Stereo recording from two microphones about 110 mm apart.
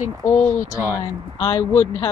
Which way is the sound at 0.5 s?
30° left (ahead or behind).